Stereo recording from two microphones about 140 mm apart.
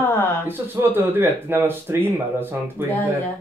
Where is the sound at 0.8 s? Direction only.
15° right (ahead or behind).